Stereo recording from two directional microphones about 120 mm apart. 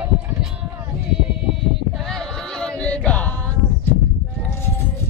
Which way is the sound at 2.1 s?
5° left (ahead or behind).